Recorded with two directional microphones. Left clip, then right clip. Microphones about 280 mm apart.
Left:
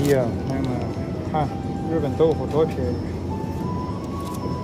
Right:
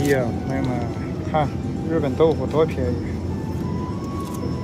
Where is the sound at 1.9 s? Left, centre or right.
Centre.